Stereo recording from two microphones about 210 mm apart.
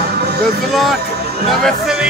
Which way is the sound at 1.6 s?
Centre (ahead or behind).